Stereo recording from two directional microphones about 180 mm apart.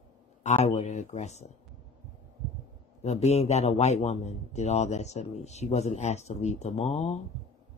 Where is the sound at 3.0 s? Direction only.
35° left (ahead or behind).